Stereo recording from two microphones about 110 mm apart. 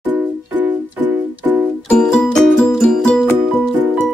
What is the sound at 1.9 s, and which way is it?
Music, 5° left (ahead or behind).